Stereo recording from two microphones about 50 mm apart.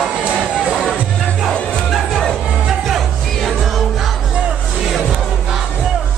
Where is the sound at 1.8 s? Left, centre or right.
Centre.